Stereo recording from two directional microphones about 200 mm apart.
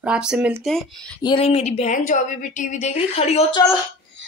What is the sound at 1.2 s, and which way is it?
A woman's voice, 25° left (ahead or behind).